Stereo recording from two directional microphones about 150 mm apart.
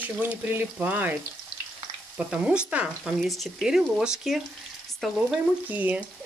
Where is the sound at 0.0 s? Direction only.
10° right (ahead or behind).